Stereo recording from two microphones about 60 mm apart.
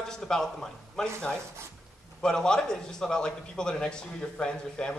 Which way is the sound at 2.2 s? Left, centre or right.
Centre.